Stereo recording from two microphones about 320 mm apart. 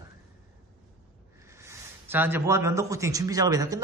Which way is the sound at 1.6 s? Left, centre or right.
Centre.